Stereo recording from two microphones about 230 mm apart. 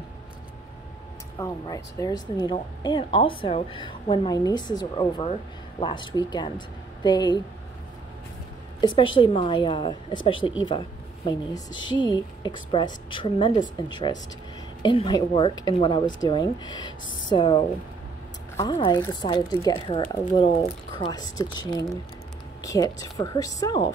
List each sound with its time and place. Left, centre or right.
1.4 s a woman's voice: centre
8.8 s a woman's voice: left